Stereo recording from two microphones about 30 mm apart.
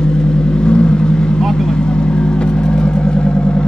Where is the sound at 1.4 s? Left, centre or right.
Centre.